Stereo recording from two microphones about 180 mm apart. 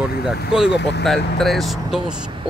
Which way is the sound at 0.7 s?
75° left (ahead or behind).